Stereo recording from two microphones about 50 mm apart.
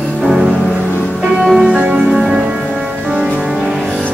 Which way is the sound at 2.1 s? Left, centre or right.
Centre.